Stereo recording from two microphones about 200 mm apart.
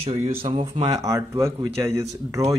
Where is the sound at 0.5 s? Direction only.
25° right (ahead or behind).